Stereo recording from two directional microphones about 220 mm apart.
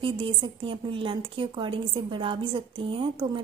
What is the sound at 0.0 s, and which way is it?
A woman's voice, 25° right (ahead or behind).